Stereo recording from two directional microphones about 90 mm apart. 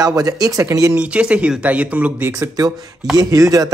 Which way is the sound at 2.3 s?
40° right (ahead or behind).